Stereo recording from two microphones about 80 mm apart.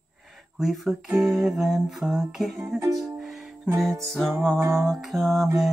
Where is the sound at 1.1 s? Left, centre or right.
Centre.